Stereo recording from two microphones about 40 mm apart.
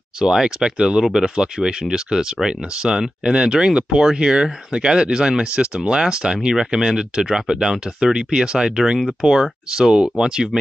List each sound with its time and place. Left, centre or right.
0.2 s speech: centre